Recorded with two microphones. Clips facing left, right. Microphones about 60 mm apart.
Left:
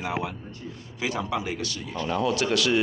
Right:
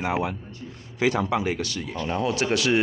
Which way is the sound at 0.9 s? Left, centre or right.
Right.